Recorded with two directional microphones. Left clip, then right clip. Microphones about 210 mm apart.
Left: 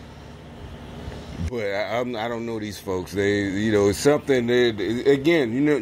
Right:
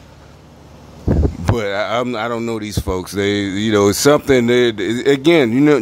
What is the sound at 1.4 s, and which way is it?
Speech, 30° right (ahead or behind).